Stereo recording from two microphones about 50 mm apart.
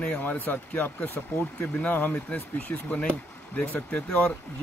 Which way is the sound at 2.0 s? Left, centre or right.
Left.